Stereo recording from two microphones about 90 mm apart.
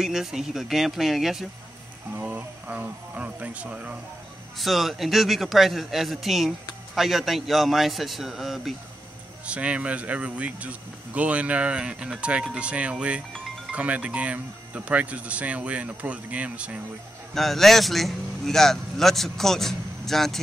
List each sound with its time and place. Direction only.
0.0 s speech: 5° right (ahead or behind)
2.1 s speech: 15° right (ahead or behind)
4.6 s speech: centre (ahead or behind)
9.5 s speech: 15° right (ahead or behind)
17.3 s speech: centre (ahead or behind)